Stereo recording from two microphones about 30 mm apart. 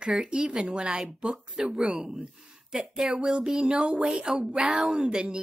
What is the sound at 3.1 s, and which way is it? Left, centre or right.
A woman's voice, right.